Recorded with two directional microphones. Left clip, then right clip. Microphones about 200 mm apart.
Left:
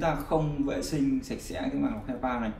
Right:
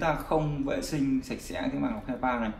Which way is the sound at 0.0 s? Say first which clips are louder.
Even; 30° right (ahead or behind).